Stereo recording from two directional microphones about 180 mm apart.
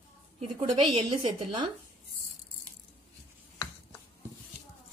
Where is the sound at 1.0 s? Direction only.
25° right (ahead or behind).